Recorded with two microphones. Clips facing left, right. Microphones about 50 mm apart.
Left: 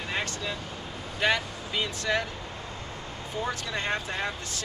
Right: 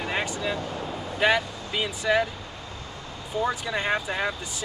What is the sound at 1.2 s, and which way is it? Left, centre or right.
Speech, centre.